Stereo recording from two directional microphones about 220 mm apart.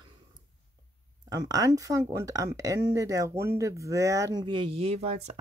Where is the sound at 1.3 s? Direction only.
15° right (ahead or behind).